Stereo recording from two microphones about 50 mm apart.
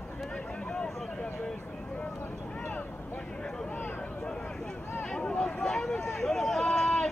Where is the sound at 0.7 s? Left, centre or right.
Centre.